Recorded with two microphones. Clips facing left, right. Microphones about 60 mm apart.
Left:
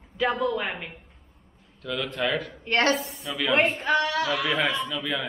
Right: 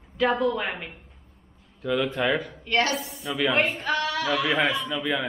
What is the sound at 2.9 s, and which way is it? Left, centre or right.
Speech, centre.